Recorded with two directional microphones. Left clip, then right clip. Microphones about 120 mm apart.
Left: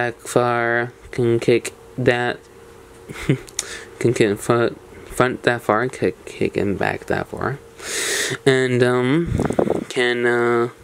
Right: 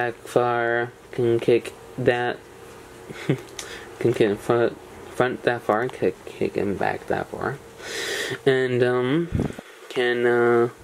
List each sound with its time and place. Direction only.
0.0 s speech: 35° left (ahead or behind)